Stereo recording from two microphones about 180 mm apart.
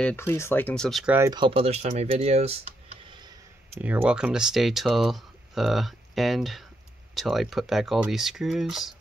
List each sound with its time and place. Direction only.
0.0 s speech: 10° left (ahead or behind)
1.1 s speech: 20° right (ahead or behind)
3.7 s speech: 10° right (ahead or behind)